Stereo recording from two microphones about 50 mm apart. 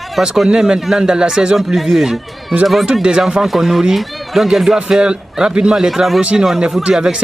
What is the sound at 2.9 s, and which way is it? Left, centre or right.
Speech, centre.